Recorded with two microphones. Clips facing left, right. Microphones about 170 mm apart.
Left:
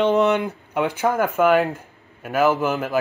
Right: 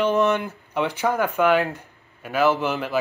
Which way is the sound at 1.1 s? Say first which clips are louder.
Left 2 dB; centre (ahead or behind).